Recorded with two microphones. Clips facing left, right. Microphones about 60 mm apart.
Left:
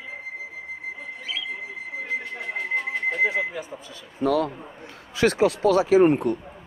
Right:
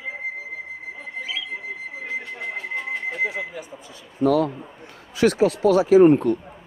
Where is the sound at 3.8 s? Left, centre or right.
Right.